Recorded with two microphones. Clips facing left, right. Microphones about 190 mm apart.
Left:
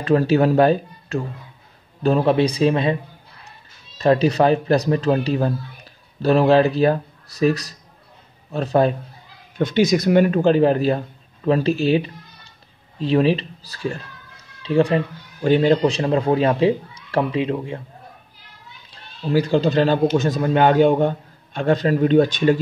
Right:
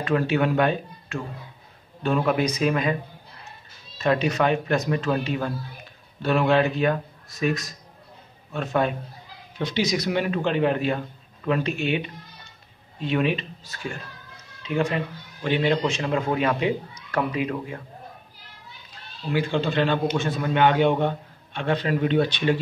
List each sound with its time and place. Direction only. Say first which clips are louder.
0.0 s speech: left 6 dB; 35° left (ahead or behind)
4.0 s speech: left 6 dB; 35° left (ahead or behind)
9.6 s speech: left 7 dB; 50° left (ahead or behind); by 17.8 s 25° left (ahead or behind)
19.3 s speech: left 6 dB; 40° left (ahead or behind)